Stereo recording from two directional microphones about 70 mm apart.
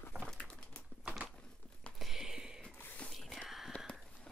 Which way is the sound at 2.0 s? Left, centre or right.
Centre.